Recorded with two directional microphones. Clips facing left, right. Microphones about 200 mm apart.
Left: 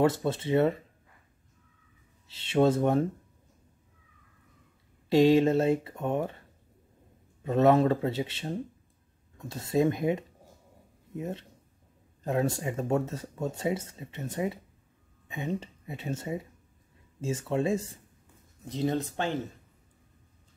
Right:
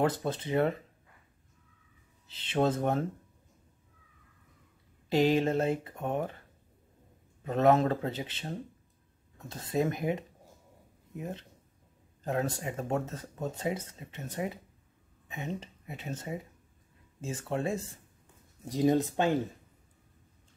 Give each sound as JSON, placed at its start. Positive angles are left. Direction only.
{"t": 0.0, "sound": "speech", "side_deg": 25}
{"t": 2.5, "sound": "speech", "side_deg": 25}
{"t": 5.1, "sound": "speech", "side_deg": 25}
{"t": 7.4, "sound": "speech", "side_deg": 30}
{"t": 9.7, "sound": "speech", "side_deg": 25}
{"t": 12.3, "sound": "speech", "side_deg": 25}
{"t": 18.7, "sound": "speech", "side_deg": -15}